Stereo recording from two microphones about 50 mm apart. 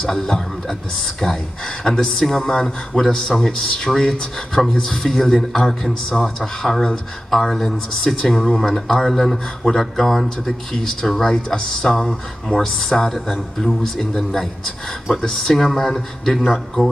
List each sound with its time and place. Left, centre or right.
0.0 s speech: centre
1.9 s speech: centre
11.1 s speech: centre